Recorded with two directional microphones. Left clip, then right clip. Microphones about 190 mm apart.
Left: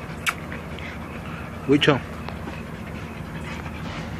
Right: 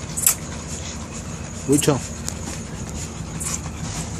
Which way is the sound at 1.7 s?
10° right (ahead or behind).